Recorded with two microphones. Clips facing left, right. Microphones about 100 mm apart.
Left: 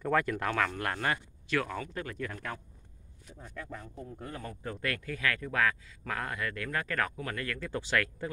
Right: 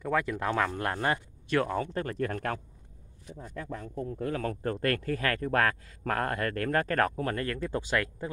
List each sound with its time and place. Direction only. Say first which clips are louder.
0.0 s speech: even; 15° right (ahead or behind); by 2.3 s 40° right (ahead or behind)
2.3 s speech: right 7 dB; 60° right (ahead or behind)
3.8 s speech: right 9 dB; 65° right (ahead or behind); by 4.6 s 90° right
4.7 s speech: right 7 dB; 45° right (ahead or behind)